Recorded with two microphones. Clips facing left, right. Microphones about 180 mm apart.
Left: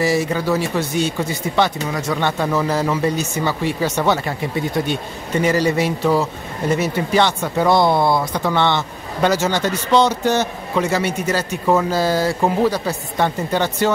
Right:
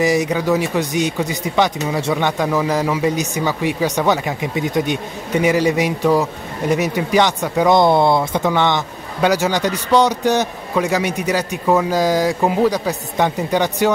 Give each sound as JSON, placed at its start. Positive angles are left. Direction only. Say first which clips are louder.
{"t": 0.0, "sound": "speech", "louder": "right 2 dB", "side_deg": -15}